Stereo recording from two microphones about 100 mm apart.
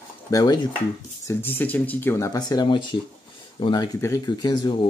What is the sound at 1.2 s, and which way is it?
Speech, 20° left (ahead or behind).